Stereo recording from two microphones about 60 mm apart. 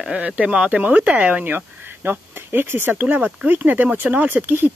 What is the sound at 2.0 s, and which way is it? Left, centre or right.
Speech, right.